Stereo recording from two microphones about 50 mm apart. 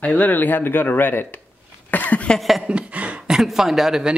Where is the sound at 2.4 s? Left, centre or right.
Centre.